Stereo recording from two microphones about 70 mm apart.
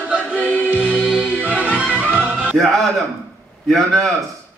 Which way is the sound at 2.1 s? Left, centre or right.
Right.